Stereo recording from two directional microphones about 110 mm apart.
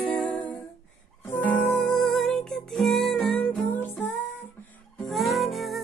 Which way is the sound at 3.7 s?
15° left (ahead or behind).